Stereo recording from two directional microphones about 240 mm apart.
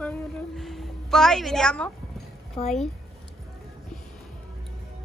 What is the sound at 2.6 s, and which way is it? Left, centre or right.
Speech, left.